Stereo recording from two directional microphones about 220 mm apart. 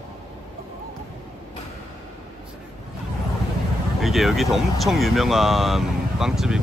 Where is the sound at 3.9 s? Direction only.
Centre (ahead or behind).